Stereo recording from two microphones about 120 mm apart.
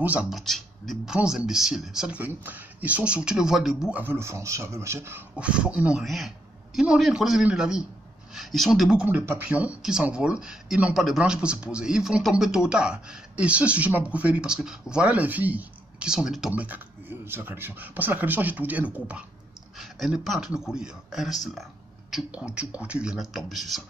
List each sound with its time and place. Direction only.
0.0 s speech: 10° right (ahead or behind)
0.3 s speech: centre (ahead or behind)
4.0 s a man's voice: 20° right (ahead or behind)
5.4 s speech: 10° right (ahead or behind)
9.0 s speech: 20° right (ahead or behind)
19.8 s speech: centre (ahead or behind)